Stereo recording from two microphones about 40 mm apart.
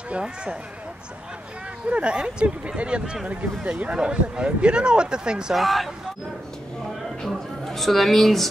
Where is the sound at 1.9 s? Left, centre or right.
Right.